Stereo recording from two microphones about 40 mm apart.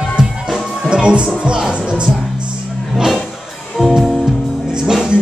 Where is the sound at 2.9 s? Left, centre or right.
Centre.